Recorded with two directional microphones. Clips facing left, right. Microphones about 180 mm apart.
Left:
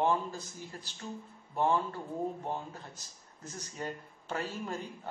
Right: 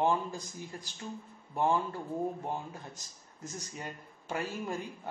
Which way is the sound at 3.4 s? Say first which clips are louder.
Left 2 dB; 10° right (ahead or behind).